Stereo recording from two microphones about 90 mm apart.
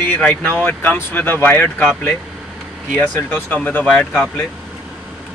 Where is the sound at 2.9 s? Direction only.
20° left (ahead or behind).